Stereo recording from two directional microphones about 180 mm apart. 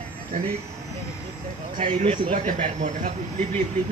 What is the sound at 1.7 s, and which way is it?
Speech, 40° right (ahead or behind).